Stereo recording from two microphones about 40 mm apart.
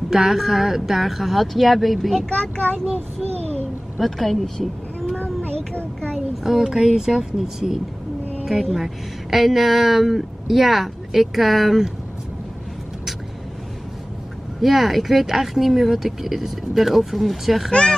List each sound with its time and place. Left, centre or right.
0.1 s speech: centre
2.2 s speech: left
4.0 s speech: centre
6.1 s speech: centre
14.6 s speech: centre